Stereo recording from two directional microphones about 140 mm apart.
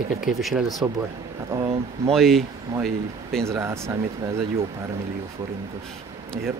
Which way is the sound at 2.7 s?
20° right (ahead or behind).